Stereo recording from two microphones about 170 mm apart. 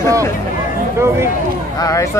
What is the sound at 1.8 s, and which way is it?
Speech, 20° left (ahead or behind).